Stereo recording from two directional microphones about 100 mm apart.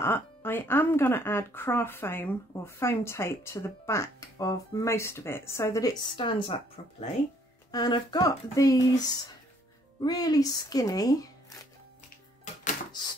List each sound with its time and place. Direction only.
0.0 s speech: 20° left (ahead or behind)
6.1 s a woman's voice: 55° left (ahead or behind)
7.7 s speech: 40° left (ahead or behind)